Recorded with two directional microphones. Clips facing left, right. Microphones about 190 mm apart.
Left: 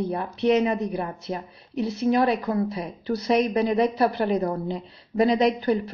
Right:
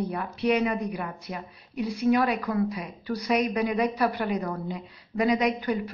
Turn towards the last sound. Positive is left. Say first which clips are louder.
# left 5 dB
turn(degrees=30)  # may be behind; listen again after turning